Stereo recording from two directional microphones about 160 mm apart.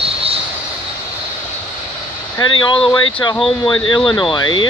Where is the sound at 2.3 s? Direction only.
30° left (ahead or behind).